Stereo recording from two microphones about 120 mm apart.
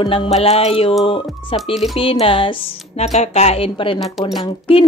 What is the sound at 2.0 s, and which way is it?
A woman's voice, 50° left (ahead or behind).